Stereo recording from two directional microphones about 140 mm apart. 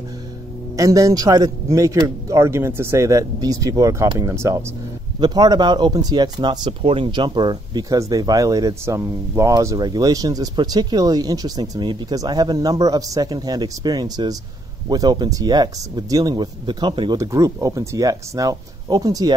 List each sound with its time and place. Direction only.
0.7 s speech: 25° right (ahead or behind)
5.2 s speech: 30° right (ahead or behind)
17.2 s speech: 25° right (ahead or behind)